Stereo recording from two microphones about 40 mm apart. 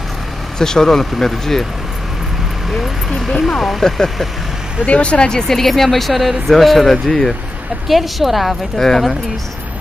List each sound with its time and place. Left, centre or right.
0.6 s speech: centre
3.3 s speech: centre
3.6 s speech: centre
4.8 s speech: left
5.5 s speech: centre
7.9 s speech: centre
8.8 s speech: centre